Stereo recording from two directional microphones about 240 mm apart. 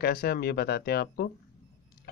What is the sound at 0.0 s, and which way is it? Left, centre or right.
Speech, left.